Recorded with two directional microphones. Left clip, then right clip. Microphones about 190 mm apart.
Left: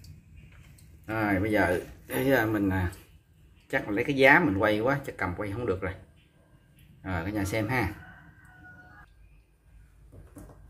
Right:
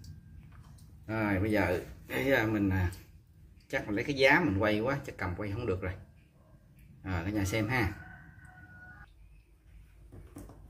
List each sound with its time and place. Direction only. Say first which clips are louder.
1.0 s speech: left 4 dB; 20° left (ahead or behind)
7.0 s speech: left 3 dB; 5° left (ahead or behind)